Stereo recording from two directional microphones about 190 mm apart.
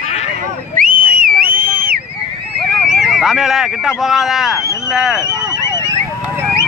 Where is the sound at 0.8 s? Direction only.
50° right (ahead or behind).